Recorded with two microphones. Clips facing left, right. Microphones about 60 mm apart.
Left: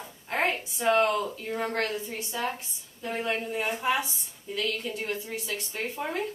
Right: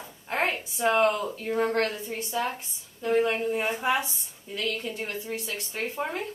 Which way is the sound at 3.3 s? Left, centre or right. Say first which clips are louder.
Right 3 dB; centre.